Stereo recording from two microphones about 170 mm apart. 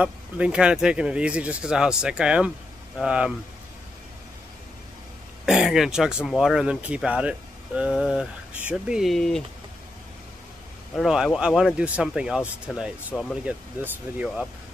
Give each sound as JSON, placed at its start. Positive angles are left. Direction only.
{"t": 0.0, "sound": "speech", "side_deg": -5}
{"t": 5.4, "sound": "speech", "side_deg": -5}
{"t": 11.0, "sound": "speech", "side_deg": 0}